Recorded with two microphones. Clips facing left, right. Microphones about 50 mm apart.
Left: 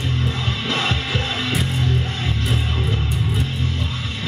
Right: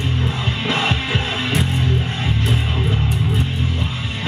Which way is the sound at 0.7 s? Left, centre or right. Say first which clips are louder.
Right 2 dB; centre.